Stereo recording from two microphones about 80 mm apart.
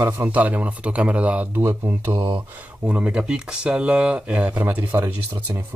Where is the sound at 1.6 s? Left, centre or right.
Right.